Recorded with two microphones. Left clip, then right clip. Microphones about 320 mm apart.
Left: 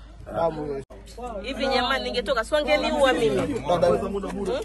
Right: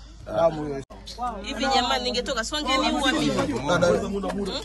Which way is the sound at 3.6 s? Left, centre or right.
Right.